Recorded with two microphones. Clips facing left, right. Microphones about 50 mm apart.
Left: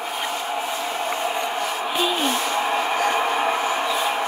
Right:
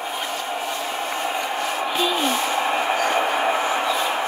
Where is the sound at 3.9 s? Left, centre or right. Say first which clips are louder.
Even; centre.